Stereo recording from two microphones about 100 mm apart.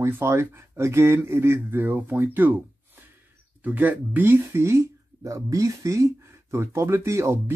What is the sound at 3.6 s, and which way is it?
Speech, 15° right (ahead or behind).